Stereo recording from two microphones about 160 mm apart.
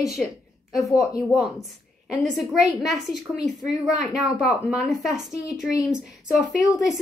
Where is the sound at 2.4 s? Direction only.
Centre (ahead or behind).